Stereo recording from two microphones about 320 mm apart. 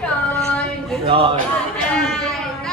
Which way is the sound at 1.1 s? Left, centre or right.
Centre.